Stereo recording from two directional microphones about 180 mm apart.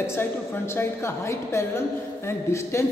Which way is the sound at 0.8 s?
15° left (ahead or behind).